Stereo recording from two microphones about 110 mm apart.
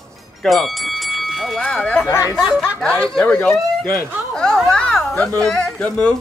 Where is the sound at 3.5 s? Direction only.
20° left (ahead or behind).